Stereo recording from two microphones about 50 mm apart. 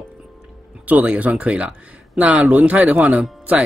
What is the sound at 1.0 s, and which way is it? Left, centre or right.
Speech, right.